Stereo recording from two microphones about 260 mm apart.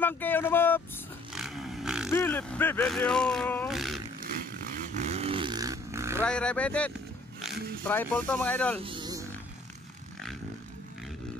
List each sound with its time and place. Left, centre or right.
0.0 s vehicle: centre
1.3 s a sound: centre
2.0 s speech: centre
4.7 s vehicle: right; by 6.2 s centre
6.2 s speech: centre
8.8 s music: centre